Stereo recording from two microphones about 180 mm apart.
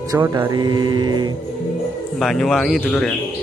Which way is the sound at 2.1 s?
Centre (ahead or behind).